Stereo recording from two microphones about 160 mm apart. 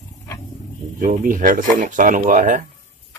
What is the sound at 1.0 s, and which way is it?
Speech, 55° right (ahead or behind).